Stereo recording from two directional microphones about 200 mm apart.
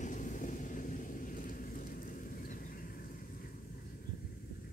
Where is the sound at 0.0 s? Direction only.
40° left (ahead or behind).